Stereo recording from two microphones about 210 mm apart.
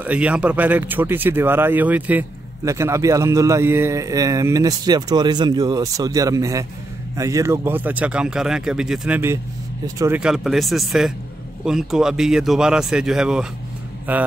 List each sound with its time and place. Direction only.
0.0 s speech: 5° right (ahead or behind)